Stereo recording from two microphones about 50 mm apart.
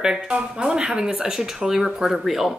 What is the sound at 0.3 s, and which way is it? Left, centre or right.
Speech, centre.